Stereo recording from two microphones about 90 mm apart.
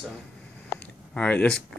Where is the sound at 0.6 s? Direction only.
15° left (ahead or behind).